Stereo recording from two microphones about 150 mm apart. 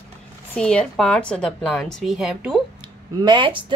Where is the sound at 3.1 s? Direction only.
30° right (ahead or behind).